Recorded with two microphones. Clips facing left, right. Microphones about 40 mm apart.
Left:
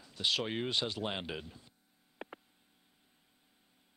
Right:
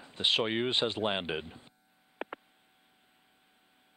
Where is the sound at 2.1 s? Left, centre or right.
Right.